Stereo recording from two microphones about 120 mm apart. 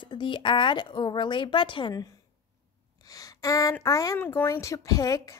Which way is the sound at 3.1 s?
30° left (ahead or behind).